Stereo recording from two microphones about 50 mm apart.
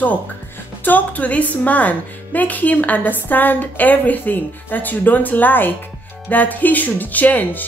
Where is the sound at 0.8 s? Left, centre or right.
Left.